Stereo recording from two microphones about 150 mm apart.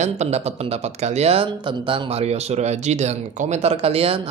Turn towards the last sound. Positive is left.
turn(degrees=-40)  # may be behind; listen again after turning